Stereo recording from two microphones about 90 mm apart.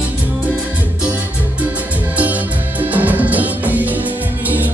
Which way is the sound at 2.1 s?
20° right (ahead or behind).